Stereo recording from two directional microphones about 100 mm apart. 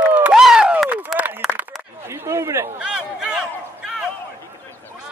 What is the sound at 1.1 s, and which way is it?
Run, 15° right (ahead or behind).